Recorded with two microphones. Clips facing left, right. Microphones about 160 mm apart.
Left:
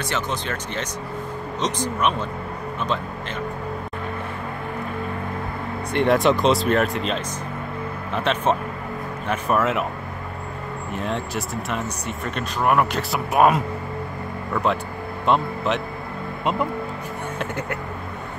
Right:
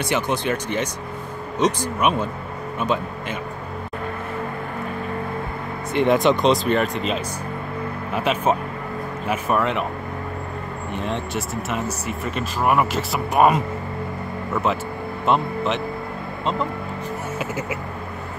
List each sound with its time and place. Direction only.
0.0 s speech: 15° right (ahead or behind)
5.9 s speech: centre (ahead or behind)
10.9 s speech: centre (ahead or behind)
17.4 s speech: 5° right (ahead or behind)